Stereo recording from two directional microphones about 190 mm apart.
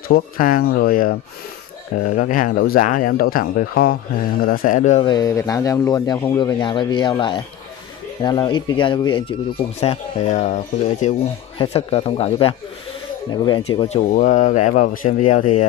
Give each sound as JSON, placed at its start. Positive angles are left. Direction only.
{"t": 0.1, "sound": "speech", "side_deg": 50}
{"t": 5.0, "sound": "speech", "side_deg": 20}
{"t": 9.8, "sound": "speech", "side_deg": 35}
{"t": 13.7, "sound": "speech", "side_deg": 35}